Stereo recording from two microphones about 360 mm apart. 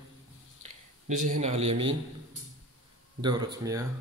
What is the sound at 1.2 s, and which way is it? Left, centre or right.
Speech, centre.